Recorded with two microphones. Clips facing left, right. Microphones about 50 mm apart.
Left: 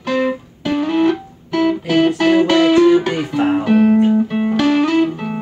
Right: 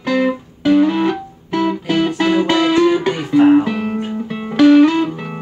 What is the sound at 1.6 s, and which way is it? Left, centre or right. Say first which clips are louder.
Music: left 2 dB; left.